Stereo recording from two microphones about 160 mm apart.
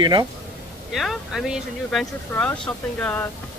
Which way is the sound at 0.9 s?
Centre (ahead or behind).